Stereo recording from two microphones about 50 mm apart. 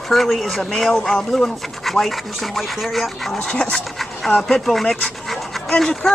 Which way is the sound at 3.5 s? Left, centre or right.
Centre.